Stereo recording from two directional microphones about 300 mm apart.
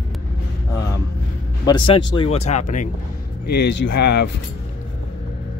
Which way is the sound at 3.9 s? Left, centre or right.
Left.